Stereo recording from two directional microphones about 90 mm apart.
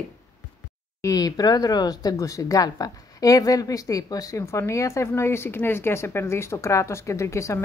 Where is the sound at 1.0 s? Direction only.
45° left (ahead or behind).